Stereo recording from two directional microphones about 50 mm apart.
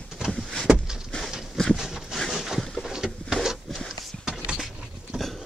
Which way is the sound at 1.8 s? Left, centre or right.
Centre.